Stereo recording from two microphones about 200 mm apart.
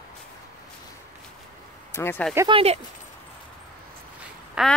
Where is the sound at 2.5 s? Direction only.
30° right (ahead or behind).